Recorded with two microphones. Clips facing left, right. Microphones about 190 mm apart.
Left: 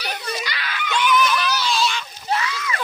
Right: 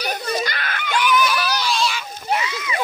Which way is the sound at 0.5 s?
50° right (ahead or behind).